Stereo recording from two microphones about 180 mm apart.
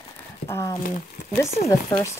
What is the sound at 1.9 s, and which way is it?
Speech, 20° left (ahead or behind).